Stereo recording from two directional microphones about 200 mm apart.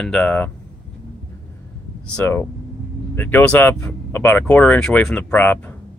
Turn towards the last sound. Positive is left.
turn(degrees=10)  # may be behind; listen again after turning